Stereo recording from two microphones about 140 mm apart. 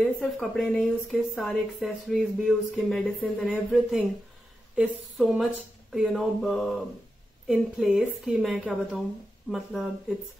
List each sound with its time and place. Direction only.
0.0 s a woman's voice: centre (ahead or behind)